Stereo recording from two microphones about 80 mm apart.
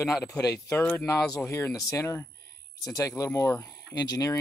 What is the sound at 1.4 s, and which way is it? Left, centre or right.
Speech, left.